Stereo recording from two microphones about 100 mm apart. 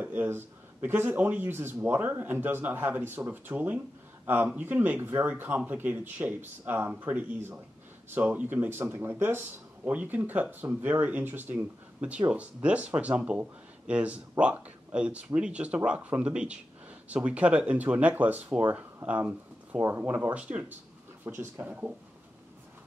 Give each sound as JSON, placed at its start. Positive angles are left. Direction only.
{"t": 0.0, "sound": "speech", "side_deg": -20}